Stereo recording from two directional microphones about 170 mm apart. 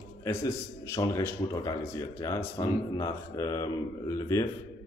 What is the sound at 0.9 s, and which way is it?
Speech, 15° left (ahead or behind).